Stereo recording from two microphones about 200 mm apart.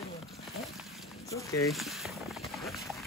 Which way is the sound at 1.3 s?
15° left (ahead or behind).